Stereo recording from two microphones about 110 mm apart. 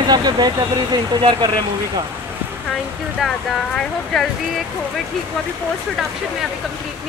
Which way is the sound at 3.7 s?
5° left (ahead or behind).